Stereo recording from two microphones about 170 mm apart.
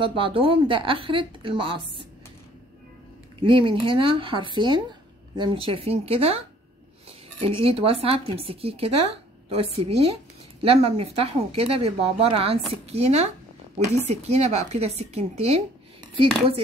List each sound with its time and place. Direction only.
0.0 s a woman's voice: 30° right (ahead or behind)
3.3 s a woman's voice: 30° right (ahead or behind)